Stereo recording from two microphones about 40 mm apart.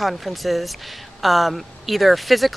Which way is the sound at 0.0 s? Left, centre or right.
Centre.